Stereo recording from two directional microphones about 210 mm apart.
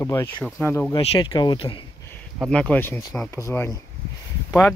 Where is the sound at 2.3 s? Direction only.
5° left (ahead or behind).